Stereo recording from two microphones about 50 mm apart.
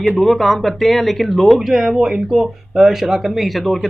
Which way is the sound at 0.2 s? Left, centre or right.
Centre.